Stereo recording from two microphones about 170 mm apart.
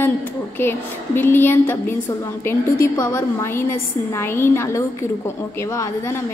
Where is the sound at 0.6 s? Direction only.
15° left (ahead or behind).